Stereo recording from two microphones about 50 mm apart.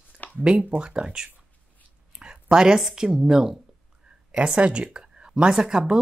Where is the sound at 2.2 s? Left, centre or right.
Centre.